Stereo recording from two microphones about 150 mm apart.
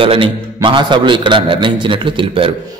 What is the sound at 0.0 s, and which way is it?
A man's voice, 35° right (ahead or behind).